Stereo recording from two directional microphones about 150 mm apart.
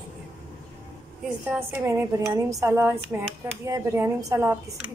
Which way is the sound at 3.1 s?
10° right (ahead or behind).